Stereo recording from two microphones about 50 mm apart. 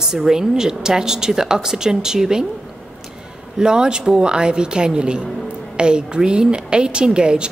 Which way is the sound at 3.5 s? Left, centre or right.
Centre.